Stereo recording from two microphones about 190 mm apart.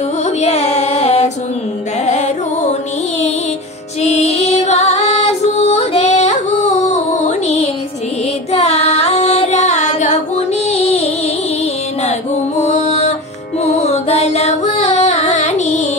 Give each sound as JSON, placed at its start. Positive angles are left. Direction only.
{"t": 0.2, "sound": "music", "side_deg": 35}
{"t": 4.0, "sound": "music", "side_deg": 35}